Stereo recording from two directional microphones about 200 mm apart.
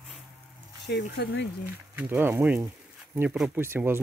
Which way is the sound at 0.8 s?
55° left (ahead or behind).